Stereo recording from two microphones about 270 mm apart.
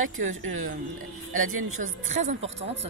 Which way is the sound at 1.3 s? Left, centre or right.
Right.